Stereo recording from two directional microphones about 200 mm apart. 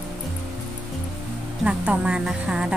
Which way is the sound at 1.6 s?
5° right (ahead or behind).